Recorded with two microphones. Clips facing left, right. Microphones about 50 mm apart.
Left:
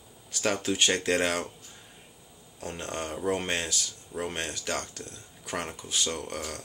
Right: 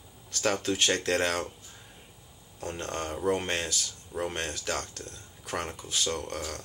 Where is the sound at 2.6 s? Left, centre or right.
Centre.